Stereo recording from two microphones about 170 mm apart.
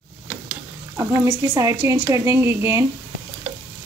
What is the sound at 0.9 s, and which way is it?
Speech, 15° right (ahead or behind).